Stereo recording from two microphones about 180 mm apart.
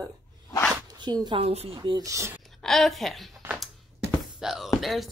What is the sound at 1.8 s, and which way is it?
Speech, 20° right (ahead or behind).